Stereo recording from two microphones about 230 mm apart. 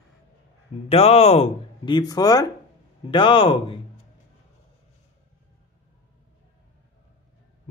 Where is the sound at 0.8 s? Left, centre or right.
Left.